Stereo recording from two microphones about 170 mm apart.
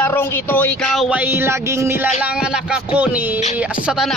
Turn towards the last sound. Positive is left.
turn(degrees=0)  # may be behind; listen again after turning